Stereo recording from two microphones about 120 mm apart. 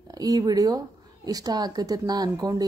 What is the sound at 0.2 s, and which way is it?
Speech, 30° right (ahead or behind).